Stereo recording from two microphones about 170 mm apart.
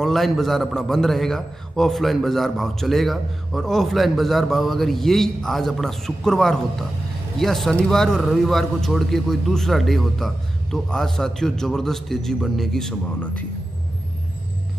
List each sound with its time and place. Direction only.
0.0 s a man's voice: centre (ahead or behind)